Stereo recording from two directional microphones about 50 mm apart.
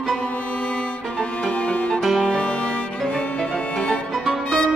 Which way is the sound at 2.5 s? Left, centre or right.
Left.